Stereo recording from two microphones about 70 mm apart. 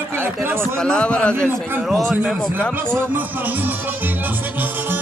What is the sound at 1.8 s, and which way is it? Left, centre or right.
Speech, centre.